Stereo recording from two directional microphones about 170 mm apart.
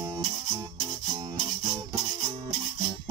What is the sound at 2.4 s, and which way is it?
Music, 30° right (ahead or behind).